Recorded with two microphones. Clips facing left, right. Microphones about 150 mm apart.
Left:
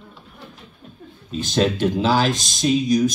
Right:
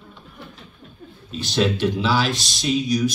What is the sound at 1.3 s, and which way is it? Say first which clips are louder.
Speech: left 2 dB; 45° left (ahead or behind).